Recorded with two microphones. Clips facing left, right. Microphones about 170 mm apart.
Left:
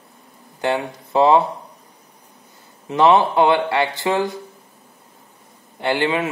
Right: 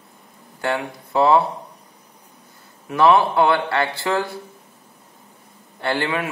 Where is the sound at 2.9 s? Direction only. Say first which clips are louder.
Left 1 dB; 20° left (ahead or behind).